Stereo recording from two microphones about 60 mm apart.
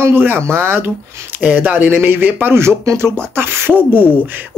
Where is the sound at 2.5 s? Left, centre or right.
Right.